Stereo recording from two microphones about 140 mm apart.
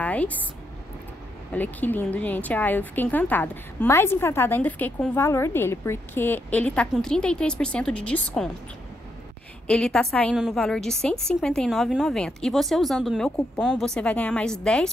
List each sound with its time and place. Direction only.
0.0 s speech: 10° left (ahead or behind)
1.5 s a woman's voice: 10° left (ahead or behind)
9.7 s a woman's voice: 5° left (ahead or behind)